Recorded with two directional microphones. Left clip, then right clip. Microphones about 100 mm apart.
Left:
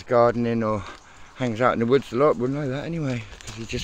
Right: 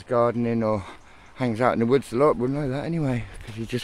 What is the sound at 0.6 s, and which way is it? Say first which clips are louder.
Speech: right 1 dB; 20° right (ahead or behind).